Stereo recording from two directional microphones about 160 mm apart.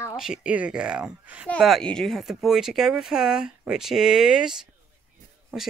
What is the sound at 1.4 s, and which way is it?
Speech, 5° left (ahead or behind).